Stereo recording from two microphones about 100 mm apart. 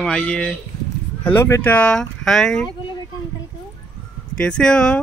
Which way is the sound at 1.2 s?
25° left (ahead or behind).